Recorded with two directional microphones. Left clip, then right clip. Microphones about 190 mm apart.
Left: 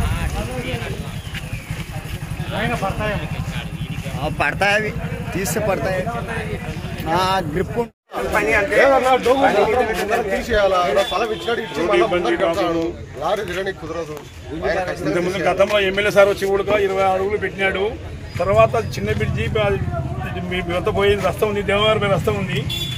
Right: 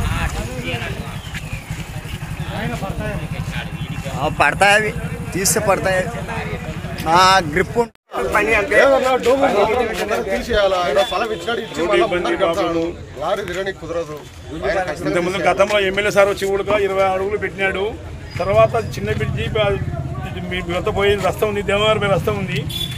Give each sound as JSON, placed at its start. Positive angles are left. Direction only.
{"t": 0.1, "sound": "clip-clop", "side_deg": 0}
{"t": 4.4, "sound": "speech", "side_deg": -45}
{"t": 5.3, "sound": "speech", "side_deg": 0}
{"t": 7.1, "sound": "speech", "side_deg": -70}
{"t": 8.2, "sound": "speech", "side_deg": 0}
{"t": 15.4, "sound": "a man's voice", "side_deg": -15}
{"t": 15.8, "sound": "speech", "side_deg": 0}